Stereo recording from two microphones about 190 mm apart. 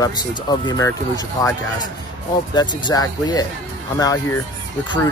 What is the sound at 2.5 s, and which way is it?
Speech, 20° left (ahead or behind).